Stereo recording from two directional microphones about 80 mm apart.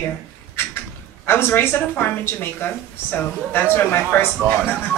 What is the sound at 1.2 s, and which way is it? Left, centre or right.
Speech, left.